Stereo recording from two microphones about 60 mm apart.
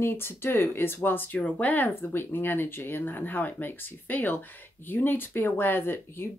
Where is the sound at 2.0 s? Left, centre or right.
Left.